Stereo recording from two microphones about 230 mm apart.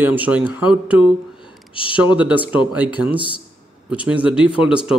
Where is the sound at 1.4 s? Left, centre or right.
Left.